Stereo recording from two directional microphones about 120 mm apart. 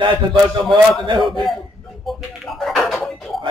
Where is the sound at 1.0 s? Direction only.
40° right (ahead or behind).